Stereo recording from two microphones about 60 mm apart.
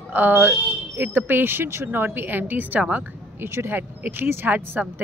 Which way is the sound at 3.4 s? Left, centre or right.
Right.